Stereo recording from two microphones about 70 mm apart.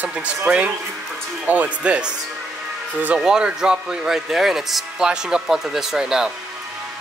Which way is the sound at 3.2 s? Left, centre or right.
Centre.